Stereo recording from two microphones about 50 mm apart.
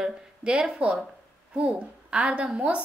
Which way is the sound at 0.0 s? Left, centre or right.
Centre.